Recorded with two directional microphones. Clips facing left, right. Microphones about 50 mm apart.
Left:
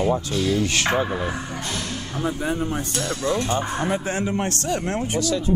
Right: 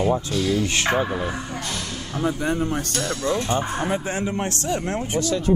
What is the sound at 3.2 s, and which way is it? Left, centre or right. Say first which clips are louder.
Speech: even; left.